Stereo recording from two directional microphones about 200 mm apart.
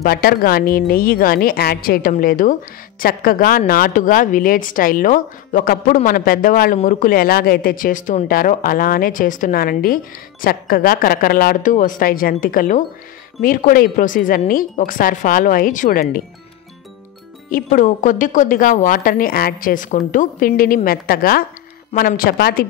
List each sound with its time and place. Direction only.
0.0 s a woman's voice: 50° left (ahead or behind)
17.5 s a woman's voice: 45° left (ahead or behind)